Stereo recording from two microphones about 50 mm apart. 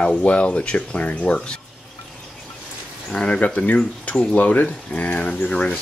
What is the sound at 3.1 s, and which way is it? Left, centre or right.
Speech, left.